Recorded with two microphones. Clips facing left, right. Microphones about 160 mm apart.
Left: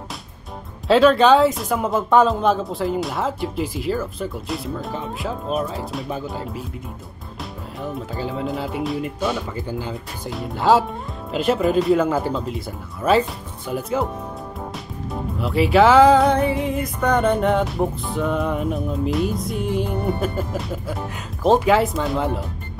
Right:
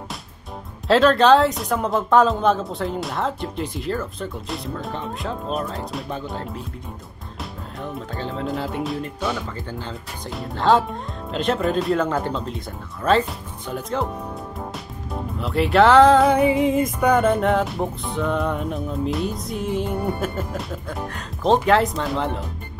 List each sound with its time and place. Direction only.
0.8 s speech: centre (ahead or behind)
7.8 s speech: 5° left (ahead or behind)
9.0 s speech: 10° left (ahead or behind)
15.0 s speech: centre (ahead or behind)
16.3 s music: 15° right (ahead or behind)
17.0 s speech: 5° right (ahead or behind)